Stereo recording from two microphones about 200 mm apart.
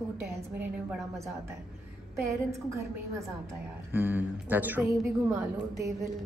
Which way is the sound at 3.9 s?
10° right (ahead or behind).